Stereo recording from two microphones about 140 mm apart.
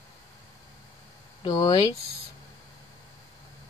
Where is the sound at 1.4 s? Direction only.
30° left (ahead or behind).